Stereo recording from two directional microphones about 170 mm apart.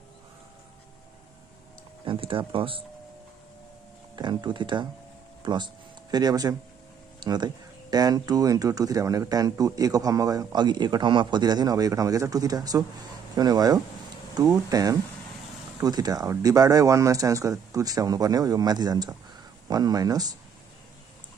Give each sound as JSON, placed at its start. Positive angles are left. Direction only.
{"t": 2.0, "sound": "speech", "side_deg": -30}
{"t": 4.1, "sound": "speech", "side_deg": -25}